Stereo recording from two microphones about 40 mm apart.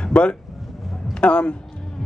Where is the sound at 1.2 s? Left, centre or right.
Left.